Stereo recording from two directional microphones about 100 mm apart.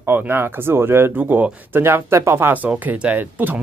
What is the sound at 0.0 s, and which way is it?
Speech, 20° right (ahead or behind).